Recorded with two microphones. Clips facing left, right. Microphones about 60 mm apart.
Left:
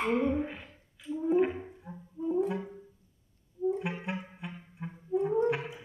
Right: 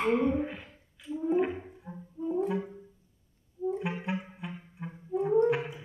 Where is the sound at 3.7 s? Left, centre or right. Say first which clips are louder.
Right 1 dB; centre.